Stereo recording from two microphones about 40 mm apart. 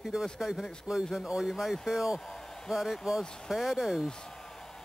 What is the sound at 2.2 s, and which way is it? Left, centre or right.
Hair dryer, centre.